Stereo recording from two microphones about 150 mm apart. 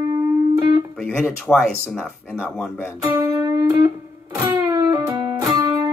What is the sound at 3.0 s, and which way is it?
Music, 20° right (ahead or behind).